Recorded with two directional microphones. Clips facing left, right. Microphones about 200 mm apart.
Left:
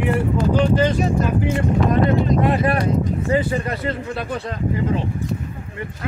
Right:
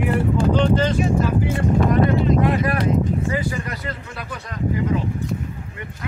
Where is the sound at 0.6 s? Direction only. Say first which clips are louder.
Left 4 dB; 10° left (ahead or behind).